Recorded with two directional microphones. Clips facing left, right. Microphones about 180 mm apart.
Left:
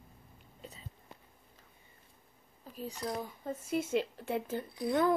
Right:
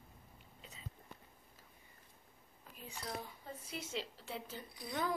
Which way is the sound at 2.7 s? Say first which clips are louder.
Left 8 dB; 40° left (ahead or behind).